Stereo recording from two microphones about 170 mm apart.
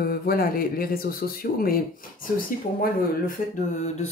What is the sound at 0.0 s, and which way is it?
Speech, 60° left (ahead or behind).